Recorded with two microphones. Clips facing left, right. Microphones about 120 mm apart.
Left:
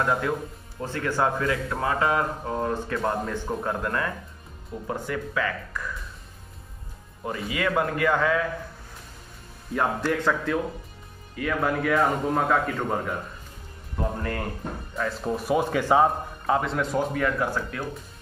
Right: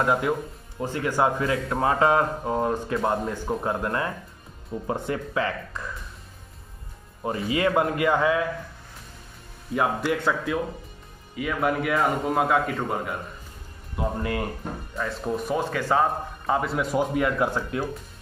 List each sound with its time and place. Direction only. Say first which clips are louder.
0.0 s a man's voice: right 2 dB; 15° right (ahead or behind)
7.4 s speech: right 3 dB; 25° right (ahead or behind)
9.8 s a man's voice: right 1 dB; 5° right (ahead or behind)
15.0 s speech: even; centre (ahead or behind)
15.5 s speech: left 4 dB; 15° left (ahead or behind)
16.4 s a man's voice: even; centre (ahead or behind); by 17.8 s 20° right (ahead or behind)